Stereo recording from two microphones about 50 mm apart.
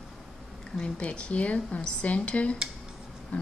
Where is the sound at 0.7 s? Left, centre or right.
Left.